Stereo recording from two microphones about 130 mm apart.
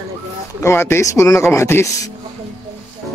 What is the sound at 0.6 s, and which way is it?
Speech, 20° left (ahead or behind).